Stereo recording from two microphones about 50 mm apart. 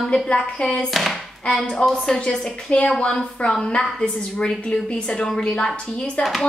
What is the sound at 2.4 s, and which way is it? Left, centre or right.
A woman's voice, left.